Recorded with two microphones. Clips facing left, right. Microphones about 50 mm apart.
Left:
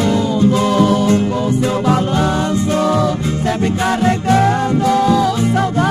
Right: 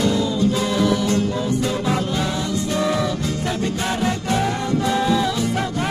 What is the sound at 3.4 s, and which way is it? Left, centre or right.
Music, left.